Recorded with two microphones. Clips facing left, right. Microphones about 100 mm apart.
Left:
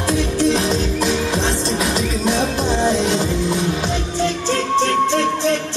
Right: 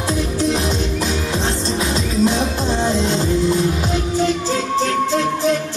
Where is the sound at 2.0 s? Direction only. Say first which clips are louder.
Right 1 dB; 30° right (ahead or behind).